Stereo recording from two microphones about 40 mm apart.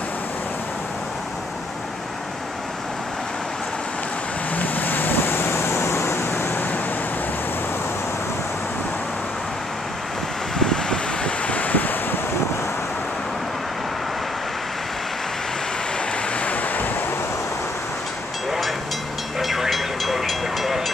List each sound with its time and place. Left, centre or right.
4.6 s vehicle: left
10.6 s vehicle: centre
11.4 s wind: left
16.3 s waves: left
19.4 s vehicle: centre